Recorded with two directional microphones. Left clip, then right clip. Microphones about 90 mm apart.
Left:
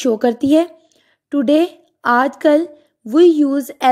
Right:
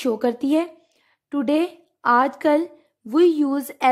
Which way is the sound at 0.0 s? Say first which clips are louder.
Left 6 dB; 25° left (ahead or behind).